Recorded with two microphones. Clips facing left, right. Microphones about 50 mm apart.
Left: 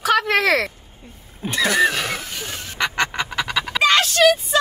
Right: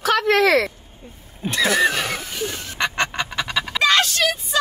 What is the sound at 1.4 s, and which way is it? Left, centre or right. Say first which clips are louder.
Vehicle: even; centre.